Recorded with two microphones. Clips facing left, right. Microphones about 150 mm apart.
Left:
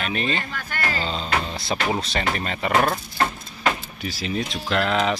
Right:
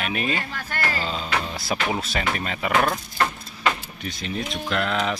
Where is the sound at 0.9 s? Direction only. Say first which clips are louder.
Left 1 dB; 30° left (ahead or behind).